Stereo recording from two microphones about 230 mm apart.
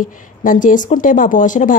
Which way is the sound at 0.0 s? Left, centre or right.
Left.